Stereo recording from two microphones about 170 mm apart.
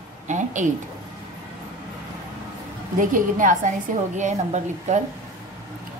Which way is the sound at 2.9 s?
50° right (ahead or behind).